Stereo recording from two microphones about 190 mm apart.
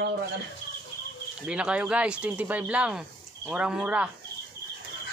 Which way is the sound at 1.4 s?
5° right (ahead or behind).